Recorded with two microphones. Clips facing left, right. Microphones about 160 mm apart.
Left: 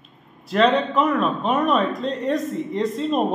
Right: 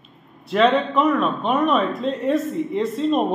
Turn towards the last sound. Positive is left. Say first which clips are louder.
# right 2 dB
turn(degrees=0)  # may be behind; listen again after turning